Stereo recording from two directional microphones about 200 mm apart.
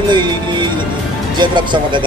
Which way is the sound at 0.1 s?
20° right (ahead or behind).